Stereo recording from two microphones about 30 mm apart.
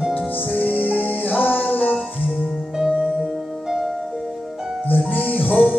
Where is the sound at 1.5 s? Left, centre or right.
Left.